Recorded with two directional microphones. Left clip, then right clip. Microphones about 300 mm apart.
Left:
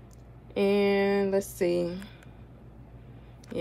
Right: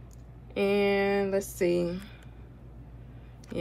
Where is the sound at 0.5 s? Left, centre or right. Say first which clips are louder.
Left 1 dB; centre.